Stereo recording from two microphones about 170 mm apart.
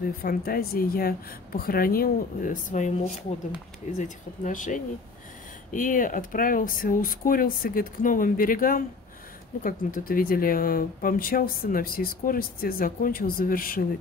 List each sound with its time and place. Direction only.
0.2 s speech: 60° left (ahead or behind)